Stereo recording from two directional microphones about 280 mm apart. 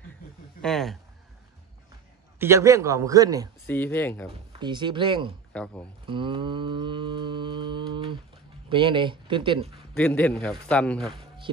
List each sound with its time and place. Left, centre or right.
0.6 s a man's voice: centre
2.3 s a man's voice: centre
3.6 s speech: centre
4.5 s a man's voice: centre
5.5 s speech: centre
6.0 s mantra: centre
8.6 s a man's voice: centre
9.9 s a man's voice: centre